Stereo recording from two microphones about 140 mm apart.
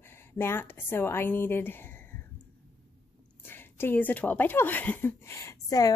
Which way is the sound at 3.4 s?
15° left (ahead or behind).